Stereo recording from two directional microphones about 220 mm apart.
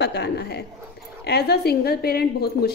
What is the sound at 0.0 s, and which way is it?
A woman's voice, 50° left (ahead or behind).